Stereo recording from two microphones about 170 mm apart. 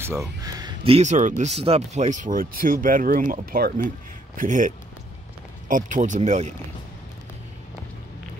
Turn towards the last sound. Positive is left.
turn(degrees=-45)  # may be behind; listen again after turning